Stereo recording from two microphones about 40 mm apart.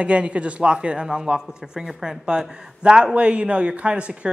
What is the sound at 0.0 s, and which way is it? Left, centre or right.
Speech, right.